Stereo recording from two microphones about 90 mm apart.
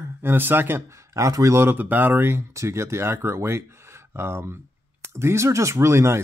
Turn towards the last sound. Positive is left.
turn(degrees=-30)  # may be behind; listen again after turning